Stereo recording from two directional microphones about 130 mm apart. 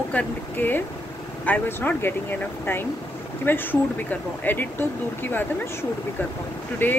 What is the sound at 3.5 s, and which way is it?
Speech, 15° left (ahead or behind).